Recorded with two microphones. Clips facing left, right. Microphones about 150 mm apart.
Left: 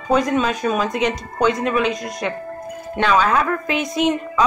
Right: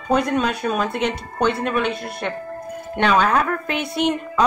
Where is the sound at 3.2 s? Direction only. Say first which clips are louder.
Left 1 dB; 55° right (ahead or behind).